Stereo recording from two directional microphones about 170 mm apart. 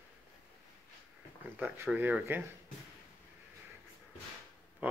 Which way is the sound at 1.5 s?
10° right (ahead or behind).